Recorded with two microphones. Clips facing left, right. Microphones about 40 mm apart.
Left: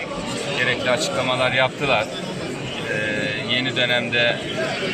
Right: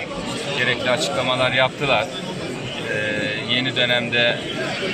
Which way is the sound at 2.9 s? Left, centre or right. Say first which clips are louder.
Right 1 dB; centre.